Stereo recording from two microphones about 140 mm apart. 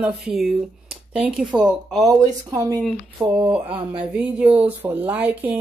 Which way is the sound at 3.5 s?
10° right (ahead or behind).